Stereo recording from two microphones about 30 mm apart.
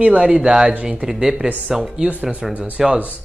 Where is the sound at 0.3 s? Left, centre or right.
Right.